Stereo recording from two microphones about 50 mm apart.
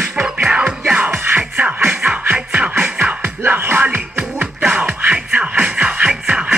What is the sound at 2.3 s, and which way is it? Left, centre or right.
Music, centre.